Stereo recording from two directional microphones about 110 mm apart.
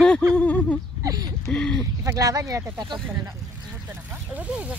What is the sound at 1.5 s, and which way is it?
Speech, 5° left (ahead or behind).